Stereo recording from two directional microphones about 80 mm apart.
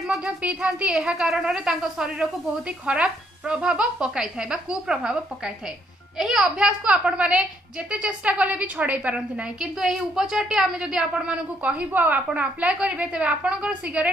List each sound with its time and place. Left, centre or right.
0.1 s a woman's voice: centre